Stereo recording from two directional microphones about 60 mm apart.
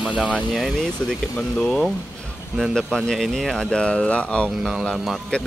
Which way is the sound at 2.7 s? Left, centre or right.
Centre.